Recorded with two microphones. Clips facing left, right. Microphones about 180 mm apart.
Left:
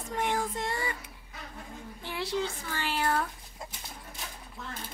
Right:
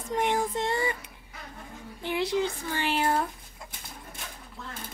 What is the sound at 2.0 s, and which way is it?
Child singing, 20° right (ahead or behind).